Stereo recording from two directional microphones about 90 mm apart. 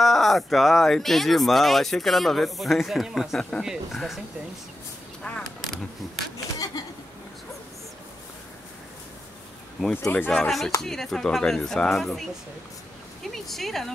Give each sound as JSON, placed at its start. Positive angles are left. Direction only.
{"t": 0.0, "sound": "speech", "side_deg": 0}
{"t": 5.4, "sound": "a sound", "side_deg": 0}
{"t": 9.8, "sound": "speech", "side_deg": 5}